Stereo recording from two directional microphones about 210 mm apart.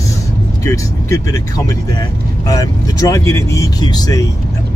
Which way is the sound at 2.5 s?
15° left (ahead or behind).